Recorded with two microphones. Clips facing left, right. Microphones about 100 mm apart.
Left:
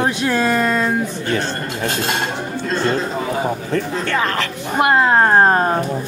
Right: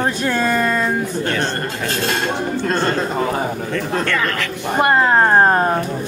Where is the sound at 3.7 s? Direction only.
30° left (ahead or behind).